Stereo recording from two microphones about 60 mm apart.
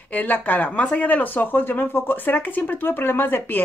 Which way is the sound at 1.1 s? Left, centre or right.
Left.